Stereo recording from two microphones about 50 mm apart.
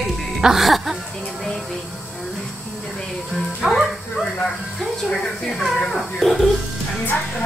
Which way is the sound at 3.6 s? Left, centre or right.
Centre.